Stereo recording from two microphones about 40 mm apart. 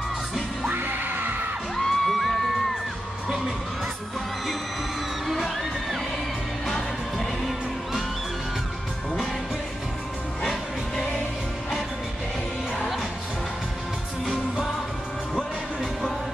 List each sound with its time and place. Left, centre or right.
0.7 s music: right
1.8 s music: centre
5.2 s music: centre
15.3 s music: centre